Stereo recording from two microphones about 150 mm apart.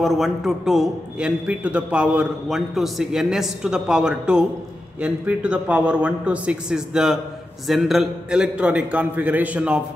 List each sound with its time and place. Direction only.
0.0 s a man's voice: centre (ahead or behind)